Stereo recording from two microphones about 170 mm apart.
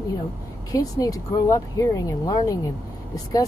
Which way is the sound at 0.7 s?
20° left (ahead or behind).